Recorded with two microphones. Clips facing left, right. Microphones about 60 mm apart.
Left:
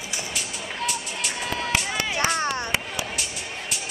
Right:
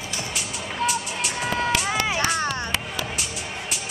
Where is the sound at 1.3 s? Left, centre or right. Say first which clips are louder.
Right 3 dB; right.